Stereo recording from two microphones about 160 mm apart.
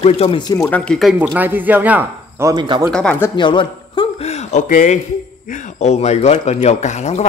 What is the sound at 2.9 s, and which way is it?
Speech, 10° left (ahead or behind).